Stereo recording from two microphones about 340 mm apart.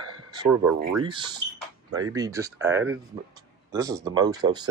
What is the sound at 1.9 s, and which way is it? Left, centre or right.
Speech, right.